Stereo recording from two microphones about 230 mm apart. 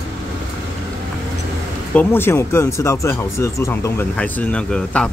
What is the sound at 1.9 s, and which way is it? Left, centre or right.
Speech, centre.